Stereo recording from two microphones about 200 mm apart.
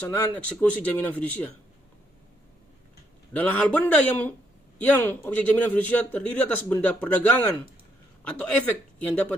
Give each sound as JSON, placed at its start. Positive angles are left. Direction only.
{"t": 0.1, "sound": "a man's voice", "side_deg": 10}
{"t": 3.3, "sound": "a man's voice", "side_deg": 10}